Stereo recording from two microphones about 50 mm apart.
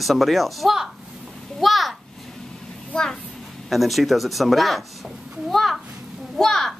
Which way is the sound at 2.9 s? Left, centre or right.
Left.